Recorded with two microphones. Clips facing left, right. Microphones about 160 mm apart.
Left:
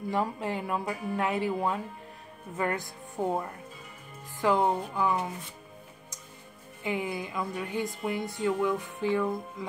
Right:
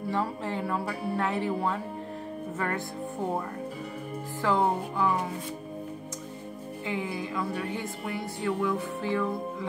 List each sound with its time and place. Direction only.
0.1 s speech: 15° left (ahead or behind)
4.4 s speech: 15° left (ahead or behind)
6.8 s speech: 15° left (ahead or behind)